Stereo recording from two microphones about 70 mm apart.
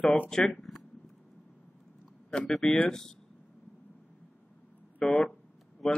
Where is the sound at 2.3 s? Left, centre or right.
Centre.